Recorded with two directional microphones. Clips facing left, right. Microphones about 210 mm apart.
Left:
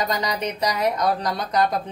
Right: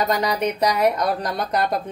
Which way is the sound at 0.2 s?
55° right (ahead or behind).